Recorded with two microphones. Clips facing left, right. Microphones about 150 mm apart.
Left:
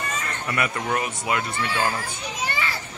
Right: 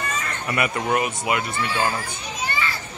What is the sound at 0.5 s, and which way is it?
Speech, 20° right (ahead or behind).